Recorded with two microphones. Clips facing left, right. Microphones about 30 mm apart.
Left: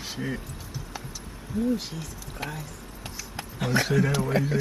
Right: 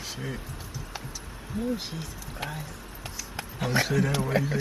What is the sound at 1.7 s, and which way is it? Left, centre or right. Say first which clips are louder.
Speech: left 2 dB; right.